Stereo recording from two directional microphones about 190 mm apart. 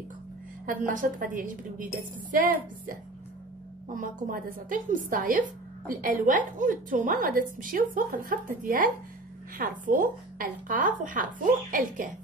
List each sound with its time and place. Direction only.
0.7 s a woman's voice: 45° right (ahead or behind)